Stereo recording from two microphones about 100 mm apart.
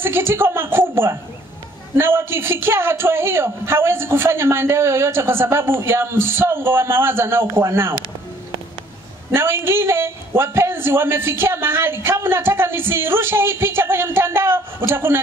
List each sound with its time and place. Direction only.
0.0 s a man's voice: 25° right (ahead or behind)
9.3 s a man's voice: 25° right (ahead or behind)